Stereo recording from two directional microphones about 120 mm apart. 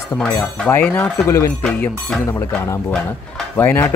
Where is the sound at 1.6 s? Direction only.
5° left (ahead or behind).